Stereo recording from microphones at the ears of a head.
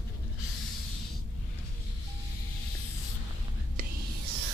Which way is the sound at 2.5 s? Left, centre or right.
Left.